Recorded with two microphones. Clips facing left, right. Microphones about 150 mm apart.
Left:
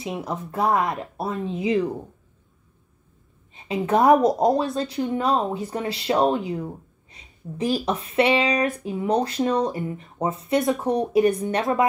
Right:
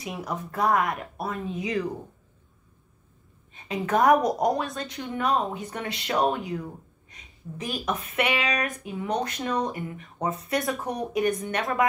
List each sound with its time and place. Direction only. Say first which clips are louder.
0.0 s speech: left 3 dB; 25° left (ahead or behind)
3.5 s speech: left 4 dB; 25° left (ahead or behind)